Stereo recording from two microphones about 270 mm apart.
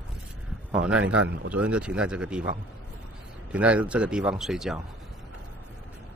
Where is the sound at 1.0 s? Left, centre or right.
Right.